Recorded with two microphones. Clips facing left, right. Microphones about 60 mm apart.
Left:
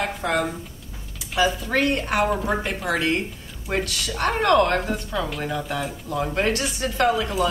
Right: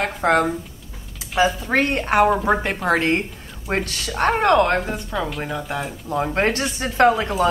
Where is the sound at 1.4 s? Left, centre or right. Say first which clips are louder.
Right 2 dB; right.